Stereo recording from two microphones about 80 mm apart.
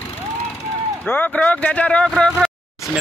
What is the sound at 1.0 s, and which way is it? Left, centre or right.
Speech, left.